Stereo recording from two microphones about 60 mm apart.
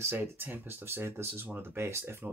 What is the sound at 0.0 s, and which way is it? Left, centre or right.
Speech, right.